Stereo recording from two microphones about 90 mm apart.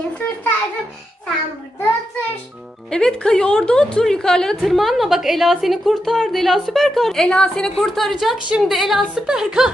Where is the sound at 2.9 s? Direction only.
10° left (ahead or behind).